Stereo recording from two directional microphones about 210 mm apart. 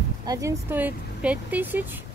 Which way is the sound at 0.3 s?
15° right (ahead or behind).